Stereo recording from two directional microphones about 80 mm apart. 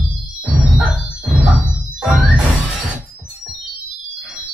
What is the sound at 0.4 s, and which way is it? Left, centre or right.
Music, centre.